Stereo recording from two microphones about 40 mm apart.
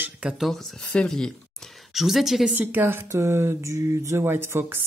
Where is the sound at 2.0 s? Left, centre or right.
Centre.